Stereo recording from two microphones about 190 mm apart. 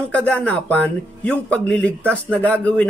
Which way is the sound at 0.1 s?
5° left (ahead or behind).